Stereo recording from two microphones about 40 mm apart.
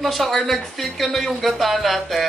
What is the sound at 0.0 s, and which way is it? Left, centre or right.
Speech, centre.